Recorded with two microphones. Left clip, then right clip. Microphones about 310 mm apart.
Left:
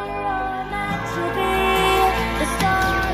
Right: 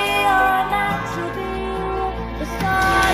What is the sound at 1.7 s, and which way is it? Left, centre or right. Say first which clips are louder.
Music: left 7 dB; left.